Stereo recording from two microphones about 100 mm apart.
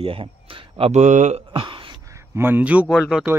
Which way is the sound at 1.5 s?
55° right (ahead or behind).